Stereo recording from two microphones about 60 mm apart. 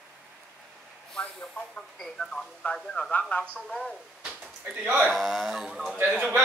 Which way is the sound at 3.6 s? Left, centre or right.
Centre.